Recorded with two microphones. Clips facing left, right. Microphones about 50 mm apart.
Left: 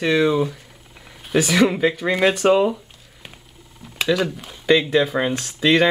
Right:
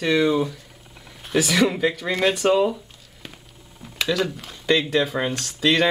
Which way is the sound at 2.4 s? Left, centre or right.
Centre.